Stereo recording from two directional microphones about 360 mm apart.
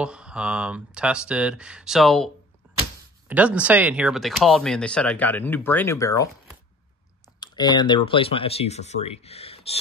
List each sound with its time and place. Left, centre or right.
0.0 s speech: centre
7.3 s speech: centre